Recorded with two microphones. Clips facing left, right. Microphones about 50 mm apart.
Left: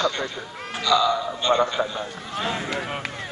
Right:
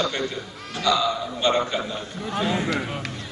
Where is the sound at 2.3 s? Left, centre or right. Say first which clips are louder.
Right 3 dB; centre.